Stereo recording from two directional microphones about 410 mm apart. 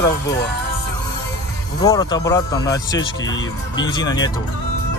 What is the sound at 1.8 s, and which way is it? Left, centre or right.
Speech, centre.